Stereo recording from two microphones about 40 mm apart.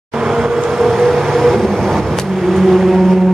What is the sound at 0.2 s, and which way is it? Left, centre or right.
Vehicle, centre.